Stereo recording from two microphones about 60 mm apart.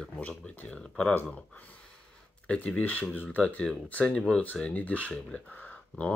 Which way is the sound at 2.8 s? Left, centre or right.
Left.